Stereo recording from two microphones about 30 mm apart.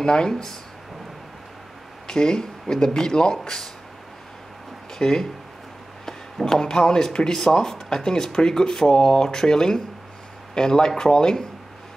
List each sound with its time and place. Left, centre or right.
0.0 s speech: left
0.3 s speech: centre
2.0 s speech: left
4.9 s speech: centre